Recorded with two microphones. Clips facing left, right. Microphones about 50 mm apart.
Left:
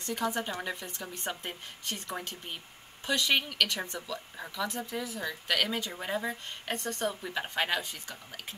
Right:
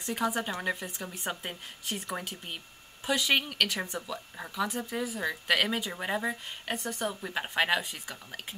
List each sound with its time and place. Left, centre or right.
0.1 s speech: centre
7.1 s speech: centre